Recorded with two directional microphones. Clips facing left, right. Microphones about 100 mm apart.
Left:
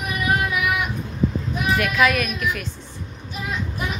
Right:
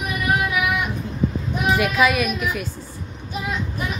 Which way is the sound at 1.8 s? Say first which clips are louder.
Even; 10° right (ahead or behind).